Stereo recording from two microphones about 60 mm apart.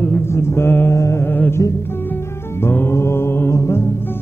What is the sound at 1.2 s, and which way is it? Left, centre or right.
Speech, left.